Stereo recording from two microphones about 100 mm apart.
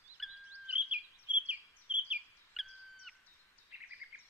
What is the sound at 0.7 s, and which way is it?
Bird vocalization, 10° right (ahead or behind).